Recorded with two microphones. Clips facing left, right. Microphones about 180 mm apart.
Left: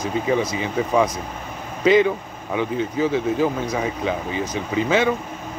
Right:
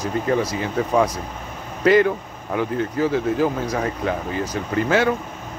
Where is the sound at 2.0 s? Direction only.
15° left (ahead or behind).